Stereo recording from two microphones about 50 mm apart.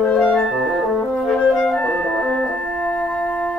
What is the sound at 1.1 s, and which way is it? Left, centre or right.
Music, left.